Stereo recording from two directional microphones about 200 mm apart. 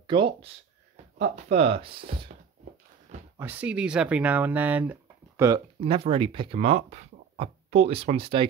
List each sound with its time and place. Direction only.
0.0 s speech: 25° right (ahead or behind)
3.3 s speech: 10° right (ahead or behind)
5.8 s speech: 30° right (ahead or behind)